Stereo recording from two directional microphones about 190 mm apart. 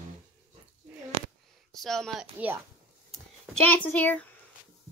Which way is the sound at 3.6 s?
10° left (ahead or behind).